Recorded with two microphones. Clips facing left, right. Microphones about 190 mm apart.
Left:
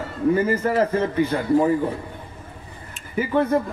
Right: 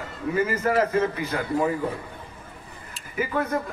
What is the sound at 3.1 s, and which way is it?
Speech, 25° left (ahead or behind).